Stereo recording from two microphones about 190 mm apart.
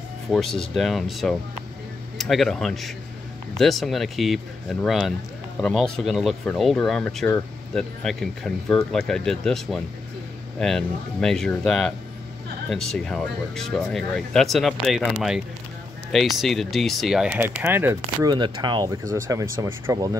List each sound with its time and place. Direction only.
0.3 s speech: centre (ahead or behind)
16.1 s speech: centre (ahead or behind)
18.3 s speech: 25° right (ahead or behind)